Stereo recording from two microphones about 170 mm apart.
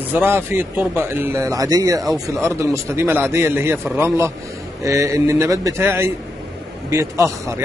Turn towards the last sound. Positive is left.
turn(degrees=-20)  # may be behind; listen again after turning